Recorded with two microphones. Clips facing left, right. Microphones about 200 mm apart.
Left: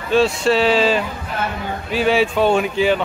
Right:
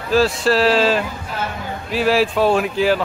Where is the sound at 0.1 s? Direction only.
Centre (ahead or behind).